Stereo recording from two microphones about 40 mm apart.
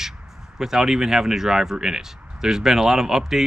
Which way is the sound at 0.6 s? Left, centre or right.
Centre.